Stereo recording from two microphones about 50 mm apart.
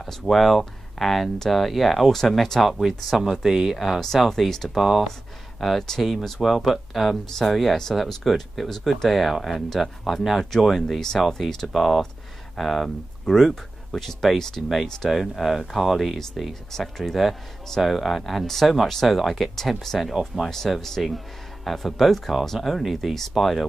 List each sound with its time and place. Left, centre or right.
0.0 s speech: centre
4.7 s speech: centre